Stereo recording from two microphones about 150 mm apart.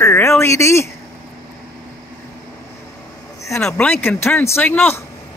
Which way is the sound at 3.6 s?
5° left (ahead or behind).